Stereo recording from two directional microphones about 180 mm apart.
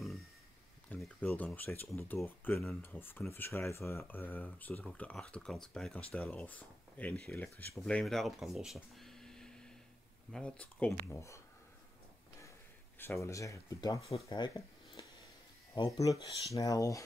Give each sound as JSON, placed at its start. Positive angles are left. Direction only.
{"t": 0.8, "sound": "speech", "side_deg": 5}
{"t": 13.0, "sound": "speech", "side_deg": 15}
{"t": 15.7, "sound": "speech", "side_deg": 20}